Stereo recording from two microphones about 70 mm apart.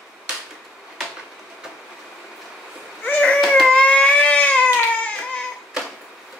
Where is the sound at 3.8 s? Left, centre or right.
Centre.